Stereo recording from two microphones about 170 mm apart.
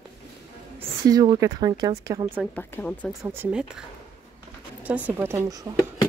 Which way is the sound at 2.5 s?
10° left (ahead or behind).